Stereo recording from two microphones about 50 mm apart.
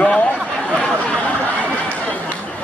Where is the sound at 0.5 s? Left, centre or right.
Centre.